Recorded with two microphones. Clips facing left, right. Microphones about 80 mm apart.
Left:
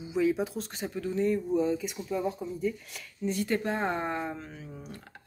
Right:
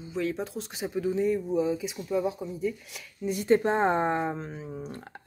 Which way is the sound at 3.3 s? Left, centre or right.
Right.